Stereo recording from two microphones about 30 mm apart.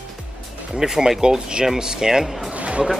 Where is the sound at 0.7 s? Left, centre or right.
Centre.